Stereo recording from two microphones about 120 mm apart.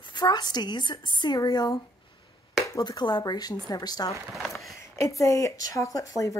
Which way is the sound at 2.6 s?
30° left (ahead or behind).